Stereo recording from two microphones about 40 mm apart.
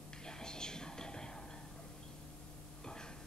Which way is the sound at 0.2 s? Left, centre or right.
Centre.